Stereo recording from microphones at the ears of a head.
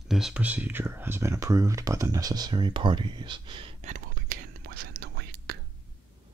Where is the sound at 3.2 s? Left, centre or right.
Right.